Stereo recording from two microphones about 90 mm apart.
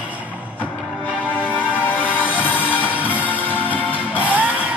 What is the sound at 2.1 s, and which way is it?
Music, 20° left (ahead or behind).